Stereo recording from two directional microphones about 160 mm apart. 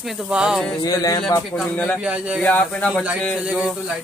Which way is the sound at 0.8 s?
25° left (ahead or behind).